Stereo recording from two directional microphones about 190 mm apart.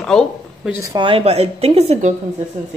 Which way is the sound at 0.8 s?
20° right (ahead or behind).